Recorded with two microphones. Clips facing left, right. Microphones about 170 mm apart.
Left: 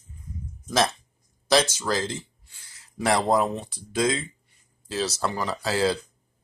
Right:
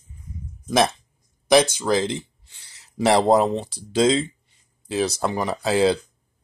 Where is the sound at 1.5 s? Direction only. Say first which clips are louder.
Right 5 dB; 15° right (ahead or behind).